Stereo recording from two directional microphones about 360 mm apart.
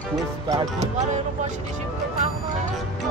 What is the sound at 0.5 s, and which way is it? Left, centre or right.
Speech, centre.